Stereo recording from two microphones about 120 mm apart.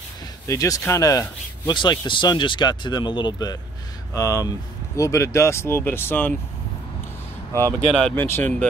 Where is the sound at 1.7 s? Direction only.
40° left (ahead or behind).